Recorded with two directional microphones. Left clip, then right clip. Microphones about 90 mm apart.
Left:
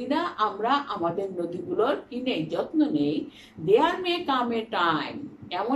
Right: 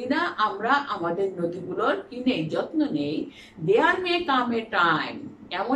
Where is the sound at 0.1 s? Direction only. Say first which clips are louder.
Right 1 dB; 30° left (ahead or behind).